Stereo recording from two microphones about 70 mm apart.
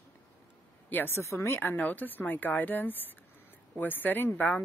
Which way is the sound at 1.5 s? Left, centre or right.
Left.